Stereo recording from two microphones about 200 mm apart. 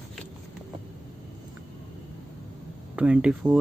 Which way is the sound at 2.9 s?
5° right (ahead or behind).